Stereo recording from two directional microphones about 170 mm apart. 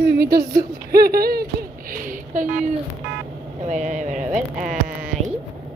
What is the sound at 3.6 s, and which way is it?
Speech, 45° right (ahead or behind).